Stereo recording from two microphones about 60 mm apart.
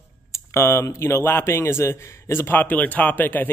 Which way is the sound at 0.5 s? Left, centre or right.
Left.